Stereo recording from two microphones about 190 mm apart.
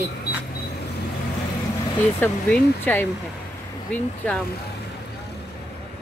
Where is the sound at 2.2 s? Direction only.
10° left (ahead or behind).